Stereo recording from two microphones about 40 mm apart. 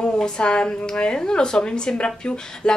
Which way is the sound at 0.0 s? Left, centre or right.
Left.